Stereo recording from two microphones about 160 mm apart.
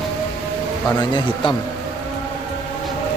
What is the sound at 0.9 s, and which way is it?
Speech, 30° left (ahead or behind).